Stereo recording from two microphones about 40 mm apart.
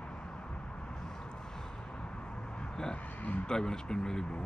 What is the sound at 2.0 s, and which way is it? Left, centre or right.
Vehicle, left.